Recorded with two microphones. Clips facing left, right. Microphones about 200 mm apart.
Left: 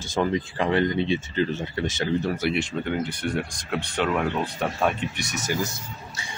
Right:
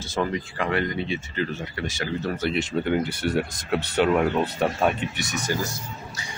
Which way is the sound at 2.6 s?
10° right (ahead or behind).